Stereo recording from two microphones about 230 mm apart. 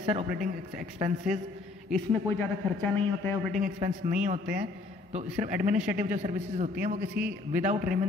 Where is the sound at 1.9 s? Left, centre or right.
Centre.